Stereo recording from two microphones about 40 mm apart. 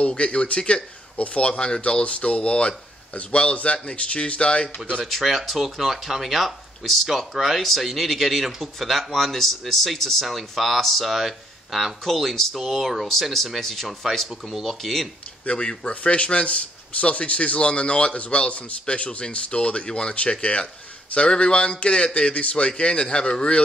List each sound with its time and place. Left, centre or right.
0.1 s a man's voice: left
1.1 s speech: left
5.0 s speech: centre
15.4 s a man's voice: left